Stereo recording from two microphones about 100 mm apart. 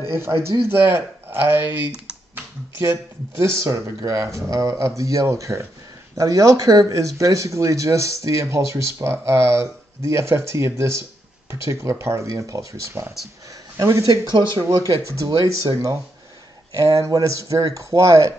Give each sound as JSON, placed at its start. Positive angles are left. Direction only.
{"t": 0.1, "sound": "speech", "side_deg": -25}